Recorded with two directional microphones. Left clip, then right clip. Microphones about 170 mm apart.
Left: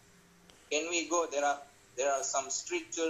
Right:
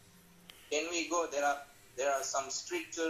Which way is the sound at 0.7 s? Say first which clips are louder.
Left 2 dB; 25° left (ahead or behind).